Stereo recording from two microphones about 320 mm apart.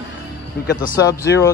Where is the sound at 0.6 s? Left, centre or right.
Left.